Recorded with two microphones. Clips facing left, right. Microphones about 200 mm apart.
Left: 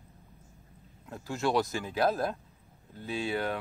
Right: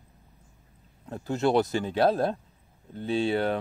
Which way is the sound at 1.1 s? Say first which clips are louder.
Right 5 dB; 35° right (ahead or behind).